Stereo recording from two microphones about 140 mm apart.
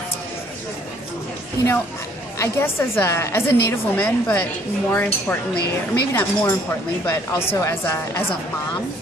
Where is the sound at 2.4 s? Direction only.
15° left (ahead or behind).